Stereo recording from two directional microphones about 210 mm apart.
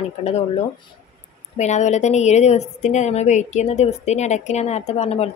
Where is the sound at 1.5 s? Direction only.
35° left (ahead or behind).